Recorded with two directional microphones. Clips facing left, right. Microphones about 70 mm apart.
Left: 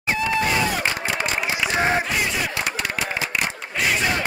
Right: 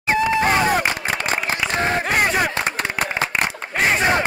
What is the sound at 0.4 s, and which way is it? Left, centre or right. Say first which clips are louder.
Crowd: right 4 dB; right.